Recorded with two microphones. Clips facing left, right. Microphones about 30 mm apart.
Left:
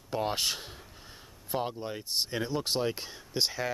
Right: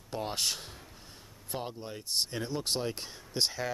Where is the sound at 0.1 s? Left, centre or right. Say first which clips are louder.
Left 3 dB; centre.